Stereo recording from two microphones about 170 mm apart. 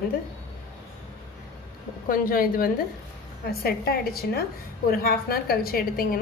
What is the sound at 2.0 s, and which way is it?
A woman's voice, 55° left (ahead or behind).